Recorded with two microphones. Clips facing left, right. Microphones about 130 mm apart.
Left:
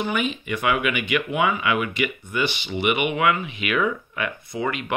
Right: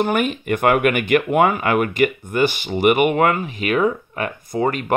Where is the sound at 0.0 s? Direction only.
50° right (ahead or behind).